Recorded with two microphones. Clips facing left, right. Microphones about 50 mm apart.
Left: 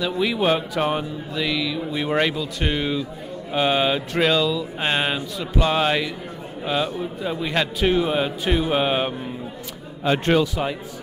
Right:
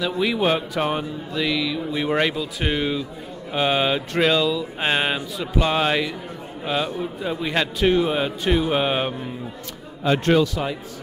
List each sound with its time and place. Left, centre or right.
0.0 s speech: centre
10.0 s speech: centre